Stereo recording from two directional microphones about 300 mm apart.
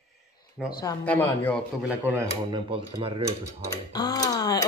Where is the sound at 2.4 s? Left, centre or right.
Centre.